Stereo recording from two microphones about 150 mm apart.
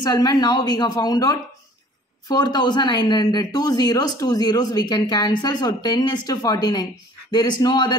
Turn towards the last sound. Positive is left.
turn(degrees=30)  # may be behind; listen again after turning